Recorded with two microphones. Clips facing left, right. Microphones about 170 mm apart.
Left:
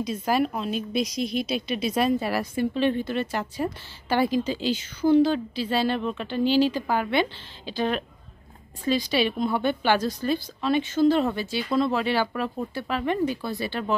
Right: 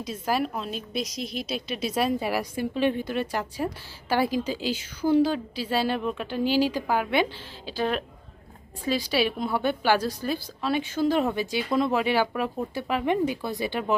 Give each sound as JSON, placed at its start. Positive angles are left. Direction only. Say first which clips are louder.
{"t": 0.0, "sound": "a woman's voice", "louder": "left 3 dB", "side_deg": 0}